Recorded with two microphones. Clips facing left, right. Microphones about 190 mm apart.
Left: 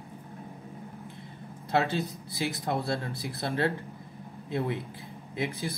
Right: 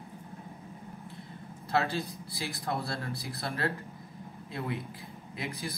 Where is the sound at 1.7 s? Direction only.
20° left (ahead or behind).